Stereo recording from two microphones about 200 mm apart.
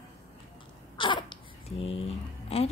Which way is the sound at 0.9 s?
25° left (ahead or behind).